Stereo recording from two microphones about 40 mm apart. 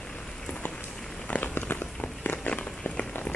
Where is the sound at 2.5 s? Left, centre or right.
Left.